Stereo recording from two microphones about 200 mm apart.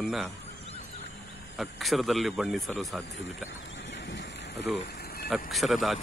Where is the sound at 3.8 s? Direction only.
60° left (ahead or behind).